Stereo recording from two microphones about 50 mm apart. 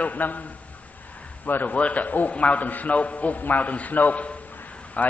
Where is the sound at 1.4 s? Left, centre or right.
Left.